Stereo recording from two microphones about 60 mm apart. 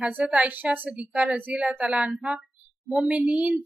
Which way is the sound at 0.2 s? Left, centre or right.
Right.